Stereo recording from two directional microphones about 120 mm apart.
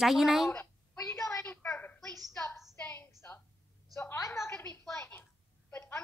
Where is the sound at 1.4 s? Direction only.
10° left (ahead or behind).